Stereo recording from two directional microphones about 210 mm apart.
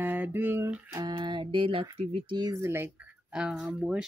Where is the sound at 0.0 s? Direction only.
10° right (ahead or behind).